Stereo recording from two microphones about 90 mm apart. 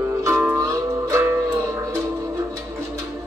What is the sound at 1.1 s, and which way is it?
Music, 25° right (ahead or behind).